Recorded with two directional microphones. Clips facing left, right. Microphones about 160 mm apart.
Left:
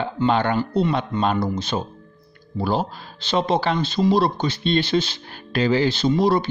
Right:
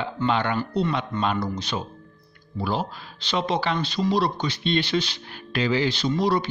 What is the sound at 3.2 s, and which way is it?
Speech, 30° left (ahead or behind).